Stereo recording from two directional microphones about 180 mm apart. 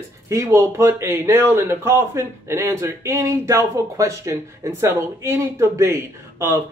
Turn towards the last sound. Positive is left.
turn(degrees=-15)  # may be behind; listen again after turning